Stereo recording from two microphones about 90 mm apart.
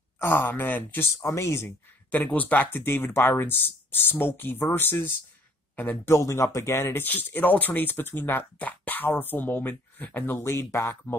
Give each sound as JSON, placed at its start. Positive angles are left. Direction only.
{"t": 0.2, "sound": "speech", "side_deg": 25}
{"t": 2.0, "sound": "speech", "side_deg": 15}